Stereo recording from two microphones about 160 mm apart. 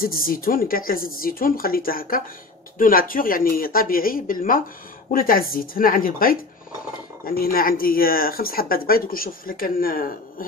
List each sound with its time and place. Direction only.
0.0 s speech: 65° left (ahead or behind)